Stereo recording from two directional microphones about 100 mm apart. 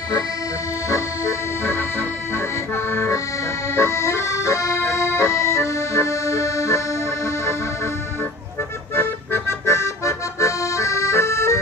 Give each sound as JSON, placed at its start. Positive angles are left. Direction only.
{"t": 0.8, "sound": "accordion", "side_deg": 35}